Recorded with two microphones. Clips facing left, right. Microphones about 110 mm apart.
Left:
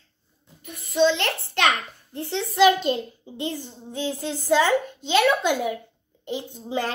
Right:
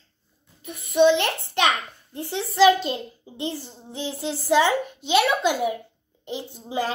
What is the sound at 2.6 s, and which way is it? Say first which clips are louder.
Speech: right 1 dB; 35° right (ahead or behind).